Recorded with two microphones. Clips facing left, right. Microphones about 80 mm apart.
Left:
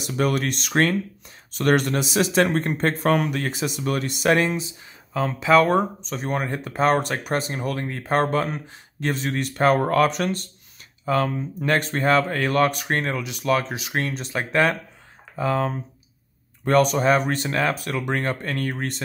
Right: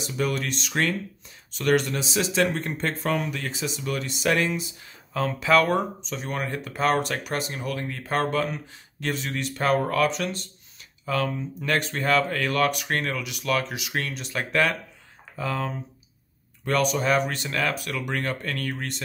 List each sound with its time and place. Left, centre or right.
0.0 s speech: left
4.3 s speech: left
5.1 s speech: centre
5.7 s speech: left
11.1 s speech: left